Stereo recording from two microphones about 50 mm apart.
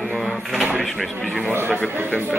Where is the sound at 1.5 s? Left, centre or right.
Right.